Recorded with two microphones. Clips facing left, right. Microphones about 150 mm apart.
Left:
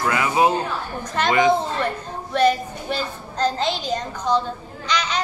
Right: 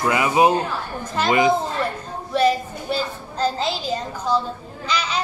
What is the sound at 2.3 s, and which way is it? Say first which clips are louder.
A woman's voice: even; 5° right (ahead or behind).